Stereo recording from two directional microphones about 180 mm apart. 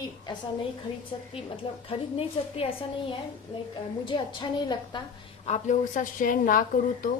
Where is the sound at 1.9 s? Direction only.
30° left (ahead or behind).